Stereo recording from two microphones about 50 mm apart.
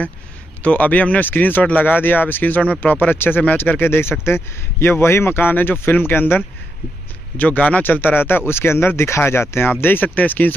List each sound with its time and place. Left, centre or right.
0.6 s speech: left